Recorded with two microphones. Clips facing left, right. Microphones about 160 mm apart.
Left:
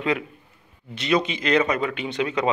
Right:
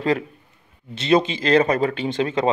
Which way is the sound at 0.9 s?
30° right (ahead or behind).